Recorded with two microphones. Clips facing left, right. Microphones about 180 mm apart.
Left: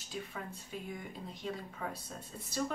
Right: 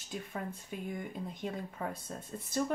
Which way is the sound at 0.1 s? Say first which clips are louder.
Right 3 dB; 50° right (ahead or behind).